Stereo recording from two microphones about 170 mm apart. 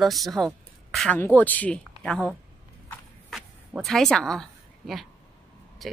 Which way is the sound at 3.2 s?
Centre (ahead or behind).